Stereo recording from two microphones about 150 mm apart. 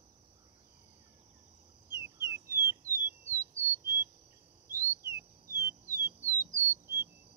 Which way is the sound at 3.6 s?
15° right (ahead or behind).